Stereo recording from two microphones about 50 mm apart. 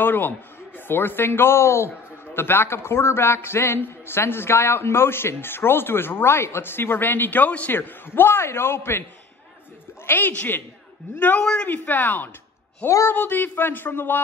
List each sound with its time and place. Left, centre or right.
0.0 s a man's voice: left
2.3 s a man's voice: left
10.0 s a woman's voice: left
11.6 s speech: left
12.8 s speech: left
13.1 s a man's voice: left